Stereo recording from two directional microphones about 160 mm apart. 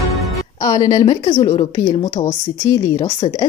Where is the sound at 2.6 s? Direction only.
25° left (ahead or behind).